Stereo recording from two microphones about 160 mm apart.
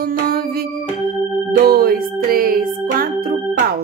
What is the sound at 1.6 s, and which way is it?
Music, 65° right (ahead or behind).